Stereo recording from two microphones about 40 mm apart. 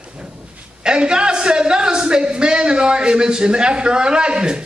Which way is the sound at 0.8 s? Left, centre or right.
Right.